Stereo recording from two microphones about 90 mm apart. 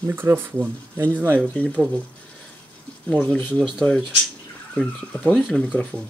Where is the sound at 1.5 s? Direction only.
15° left (ahead or behind).